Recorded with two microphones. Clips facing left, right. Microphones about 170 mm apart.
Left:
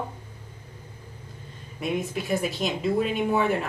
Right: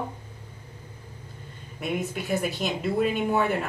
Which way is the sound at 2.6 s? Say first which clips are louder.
Even; centre (ahead or behind).